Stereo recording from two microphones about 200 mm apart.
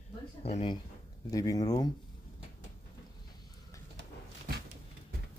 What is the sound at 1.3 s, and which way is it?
Speech, 15° left (ahead or behind).